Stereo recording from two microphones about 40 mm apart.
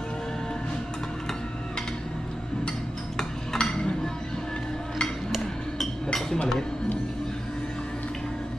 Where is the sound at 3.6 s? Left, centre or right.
Left.